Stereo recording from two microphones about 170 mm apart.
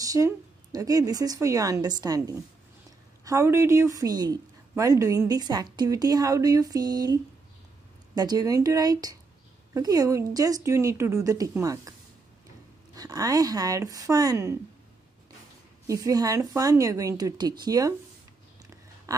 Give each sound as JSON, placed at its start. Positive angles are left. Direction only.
{"t": 0.0, "sound": "a woman's voice", "side_deg": -20}
{"t": 12.9, "sound": "a woman's voice", "side_deg": -20}
{"t": 15.9, "sound": "a woman's voice", "side_deg": -20}
{"t": 19.1, "sound": "a sound", "side_deg": -20}